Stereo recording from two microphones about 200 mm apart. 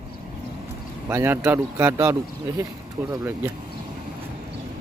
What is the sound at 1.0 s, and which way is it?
Speech, 10° right (ahead or behind).